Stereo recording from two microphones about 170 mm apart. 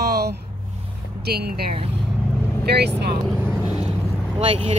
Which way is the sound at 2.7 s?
75° right (ahead or behind).